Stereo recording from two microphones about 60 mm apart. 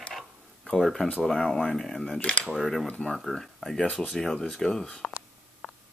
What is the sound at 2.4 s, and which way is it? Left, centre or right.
Speech, centre.